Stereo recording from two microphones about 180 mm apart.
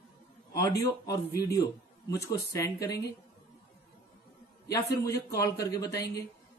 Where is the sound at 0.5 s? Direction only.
15° left (ahead or behind).